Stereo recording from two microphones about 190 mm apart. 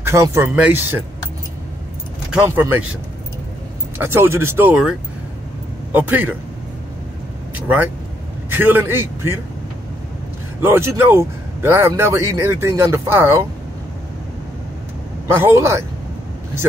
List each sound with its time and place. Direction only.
0.0 s speech: 15° right (ahead or behind)
2.4 s speech: 10° right (ahead or behind)
4.0 s speech: 10° right (ahead or behind)
7.5 s vehicle: 10° right (ahead or behind)
8.5 s a man's voice: 10° right (ahead or behind)
10.6 s speech: 15° right (ahead or behind)
15.2 s speech: 10° right (ahead or behind)